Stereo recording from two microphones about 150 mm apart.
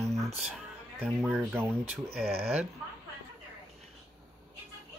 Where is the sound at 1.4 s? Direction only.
15° right (ahead or behind).